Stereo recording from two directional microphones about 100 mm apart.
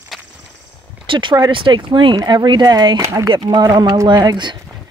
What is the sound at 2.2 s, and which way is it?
Speech, 45° right (ahead or behind).